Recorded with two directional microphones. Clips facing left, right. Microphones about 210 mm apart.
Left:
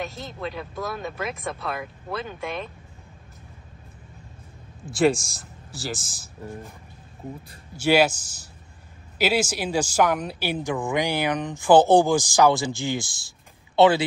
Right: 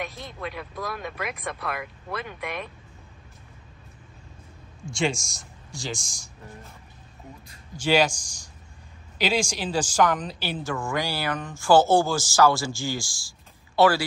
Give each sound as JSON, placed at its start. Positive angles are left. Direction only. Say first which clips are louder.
{"t": 0.1, "sound": "speech", "louder": "left 3 dB", "side_deg": 0}
{"t": 0.4, "sound": "speech", "louder": "left 2 dB", "side_deg": 25}
{"t": 4.9, "sound": "speech", "louder": "left 7 dB", "side_deg": 0}
{"t": 7.8, "sound": "speech", "louder": "left 3 dB", "side_deg": 10}
{"t": 9.2, "sound": "speech", "louder": "left 2 dB", "side_deg": 5}